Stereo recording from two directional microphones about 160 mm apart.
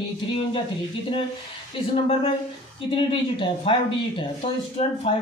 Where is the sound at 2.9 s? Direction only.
35° left (ahead or behind).